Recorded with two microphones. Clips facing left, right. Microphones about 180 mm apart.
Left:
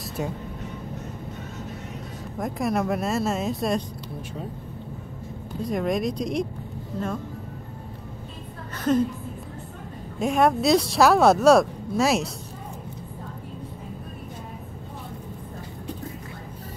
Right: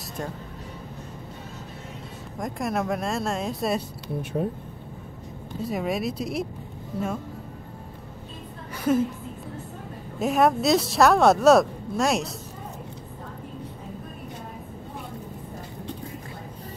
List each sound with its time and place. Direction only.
2.3 s speech: centre (ahead or behind)
4.2 s speech: 60° right (ahead or behind)
5.6 s speech: 5° right (ahead or behind)
8.7 s a sound: 10° right (ahead or behind)
10.1 s speech: centre (ahead or behind)